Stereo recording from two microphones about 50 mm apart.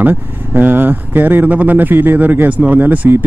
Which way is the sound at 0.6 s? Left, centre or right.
Right.